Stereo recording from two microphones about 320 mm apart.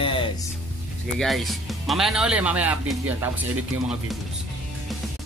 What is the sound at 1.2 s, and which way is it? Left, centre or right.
Speech, centre.